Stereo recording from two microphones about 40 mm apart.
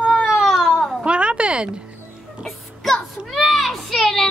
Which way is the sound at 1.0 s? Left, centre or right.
Right.